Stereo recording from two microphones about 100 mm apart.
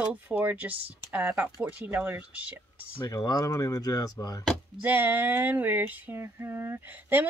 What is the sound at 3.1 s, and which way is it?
Speech, 40° left (ahead or behind).